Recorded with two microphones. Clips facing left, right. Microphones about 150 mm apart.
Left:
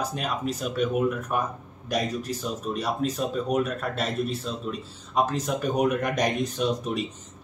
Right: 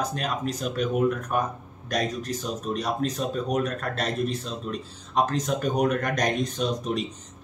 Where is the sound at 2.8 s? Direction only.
5° left (ahead or behind).